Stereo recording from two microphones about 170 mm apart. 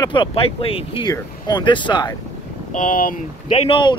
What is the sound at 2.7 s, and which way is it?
Speech, 50° left (ahead or behind).